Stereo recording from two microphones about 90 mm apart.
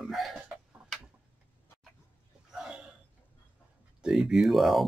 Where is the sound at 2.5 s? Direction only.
10° right (ahead or behind).